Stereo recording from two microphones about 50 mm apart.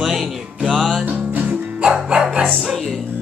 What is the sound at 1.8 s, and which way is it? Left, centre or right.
Music, centre.